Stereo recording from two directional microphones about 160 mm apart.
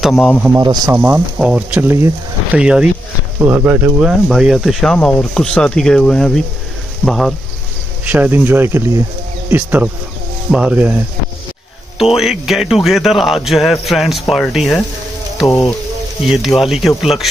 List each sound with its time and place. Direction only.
0.0 s speech: centre (ahead or behind)
0.6 s speech: 25° right (ahead or behind)
0.9 s speech: 10° right (ahead or behind)
8.0 s speech: 10° right (ahead or behind)
12.2 s speech: centre (ahead or behind)
16.2 s speech: centre (ahead or behind)